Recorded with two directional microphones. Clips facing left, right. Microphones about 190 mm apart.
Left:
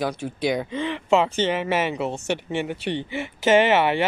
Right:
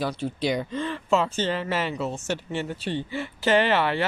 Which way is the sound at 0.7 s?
65° left (ahead or behind).